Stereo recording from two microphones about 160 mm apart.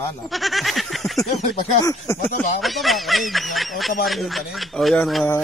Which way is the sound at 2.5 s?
Centre (ahead or behind).